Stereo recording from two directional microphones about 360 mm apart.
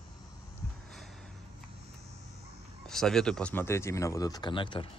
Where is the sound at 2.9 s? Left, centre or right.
Centre.